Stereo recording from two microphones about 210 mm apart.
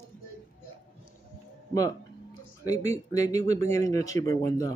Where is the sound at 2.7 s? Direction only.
15° left (ahead or behind).